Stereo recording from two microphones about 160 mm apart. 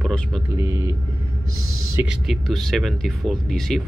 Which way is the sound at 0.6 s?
15° right (ahead or behind).